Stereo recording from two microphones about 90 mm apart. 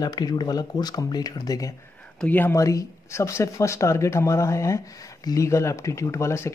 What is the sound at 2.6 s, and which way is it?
Speech, 40° left (ahead or behind).